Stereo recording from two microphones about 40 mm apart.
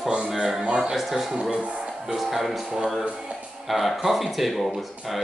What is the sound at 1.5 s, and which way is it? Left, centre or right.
Music, right.